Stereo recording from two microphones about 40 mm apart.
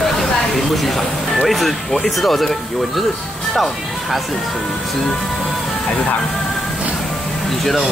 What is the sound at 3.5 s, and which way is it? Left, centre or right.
Speech, centre.